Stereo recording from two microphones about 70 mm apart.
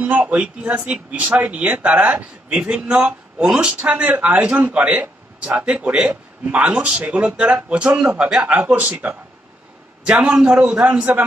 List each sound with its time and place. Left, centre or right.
0.0 s a man's voice: right